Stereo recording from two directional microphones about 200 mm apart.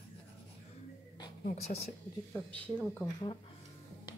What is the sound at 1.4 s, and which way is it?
Speech, 35° left (ahead or behind).